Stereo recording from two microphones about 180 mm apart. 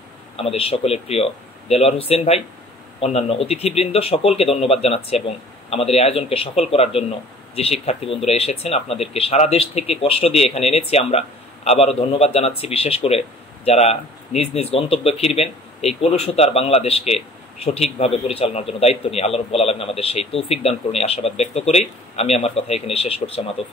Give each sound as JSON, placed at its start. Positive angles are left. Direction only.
{"t": 0.4, "sound": "a man's voice", "side_deg": 35}